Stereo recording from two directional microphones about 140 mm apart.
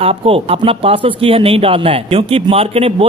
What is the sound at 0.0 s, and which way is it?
Speech, 40° right (ahead or behind).